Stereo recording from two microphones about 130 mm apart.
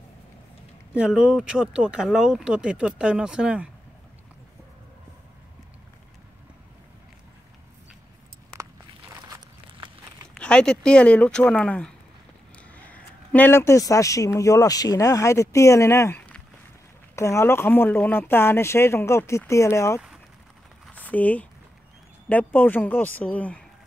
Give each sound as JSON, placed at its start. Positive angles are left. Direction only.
{"t": 0.9, "sound": "speech", "side_deg": -5}
{"t": 10.3, "sound": "speech", "side_deg": 5}
{"t": 20.9, "sound": "speech", "side_deg": 10}